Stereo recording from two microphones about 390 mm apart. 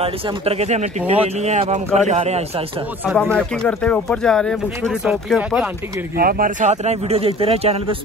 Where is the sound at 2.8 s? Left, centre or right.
Centre.